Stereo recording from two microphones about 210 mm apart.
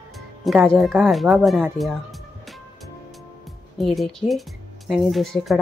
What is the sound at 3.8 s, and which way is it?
Speech, centre (ahead or behind).